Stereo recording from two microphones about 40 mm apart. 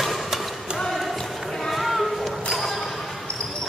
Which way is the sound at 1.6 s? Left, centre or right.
Centre.